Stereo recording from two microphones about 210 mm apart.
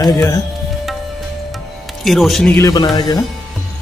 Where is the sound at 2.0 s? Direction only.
Centre (ahead or behind); by 3.2 s 20° left (ahead or behind).